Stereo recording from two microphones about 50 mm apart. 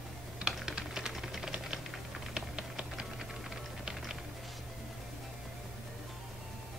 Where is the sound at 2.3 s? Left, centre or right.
Centre.